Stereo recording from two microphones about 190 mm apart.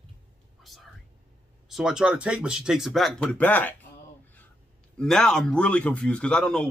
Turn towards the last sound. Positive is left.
turn(degrees=5)  # may be behind; listen again after turning